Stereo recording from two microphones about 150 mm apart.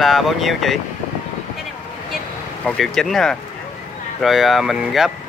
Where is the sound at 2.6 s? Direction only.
Centre (ahead or behind).